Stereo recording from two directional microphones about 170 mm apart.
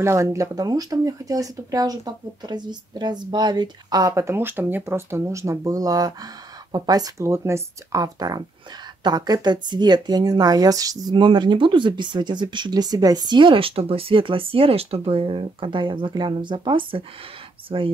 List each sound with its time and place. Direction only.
0.0 s speech: 15° right (ahead or behind)